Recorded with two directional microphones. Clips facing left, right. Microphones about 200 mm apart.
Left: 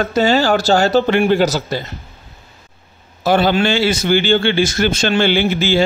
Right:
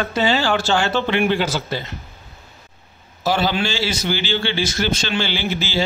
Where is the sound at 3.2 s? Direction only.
55° left (ahead or behind).